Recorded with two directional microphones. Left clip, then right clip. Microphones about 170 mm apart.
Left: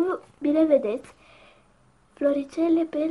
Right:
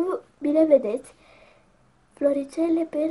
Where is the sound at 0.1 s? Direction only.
10° right (ahead or behind).